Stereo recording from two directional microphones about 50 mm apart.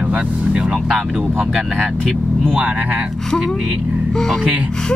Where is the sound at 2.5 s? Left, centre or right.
Right.